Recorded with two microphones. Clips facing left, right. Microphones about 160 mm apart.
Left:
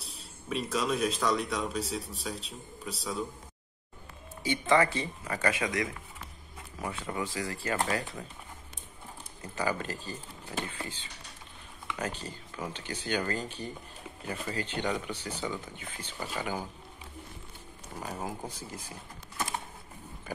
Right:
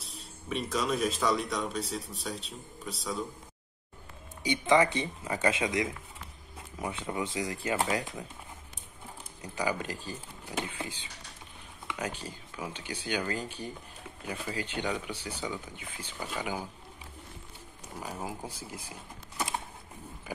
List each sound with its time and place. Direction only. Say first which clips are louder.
0.0 s speech: right 1 dB; centre (ahead or behind)
4.4 s speech: right 1 dB; 15° right (ahead or behind)
9.4 s speech: even; 10° right (ahead or behind)
18.2 s speech: left 1 dB; 10° right (ahead or behind)